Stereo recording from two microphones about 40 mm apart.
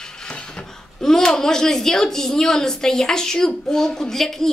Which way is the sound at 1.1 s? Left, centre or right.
Centre.